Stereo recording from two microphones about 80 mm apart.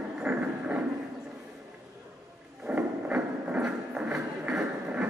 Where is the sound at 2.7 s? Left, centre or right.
Centre.